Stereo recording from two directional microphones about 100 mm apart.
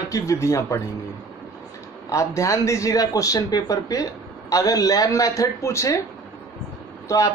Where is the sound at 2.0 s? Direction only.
30° left (ahead or behind).